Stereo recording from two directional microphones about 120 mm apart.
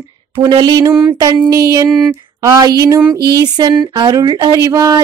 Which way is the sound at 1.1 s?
35° right (ahead or behind).